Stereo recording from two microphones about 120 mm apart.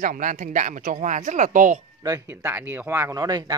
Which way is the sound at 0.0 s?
90° right.